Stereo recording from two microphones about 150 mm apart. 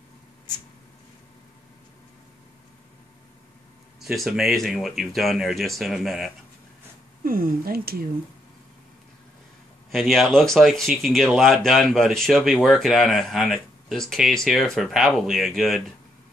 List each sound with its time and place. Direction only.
4.0 s speech: centre (ahead or behind)
7.2 s speech: 75° right (ahead or behind)
9.8 s speech: centre (ahead or behind)